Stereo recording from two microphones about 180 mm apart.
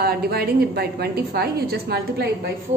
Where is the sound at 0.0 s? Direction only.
60° right (ahead or behind).